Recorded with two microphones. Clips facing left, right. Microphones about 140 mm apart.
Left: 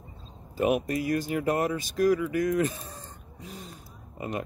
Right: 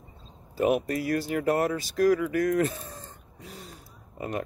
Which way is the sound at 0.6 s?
15° left (ahead or behind).